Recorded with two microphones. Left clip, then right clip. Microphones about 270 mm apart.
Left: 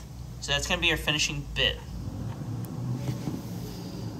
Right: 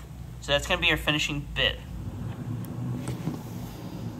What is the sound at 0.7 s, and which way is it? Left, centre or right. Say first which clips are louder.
Speech: even; centre.